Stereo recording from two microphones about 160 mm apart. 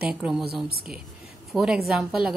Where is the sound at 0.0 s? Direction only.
5° right (ahead or behind).